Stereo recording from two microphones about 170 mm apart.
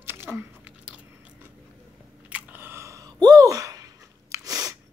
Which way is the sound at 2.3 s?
10° right (ahead or behind).